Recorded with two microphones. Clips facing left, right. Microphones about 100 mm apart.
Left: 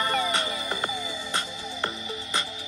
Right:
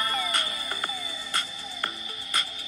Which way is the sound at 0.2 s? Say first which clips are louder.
Left 4 dB; 25° left (ahead or behind).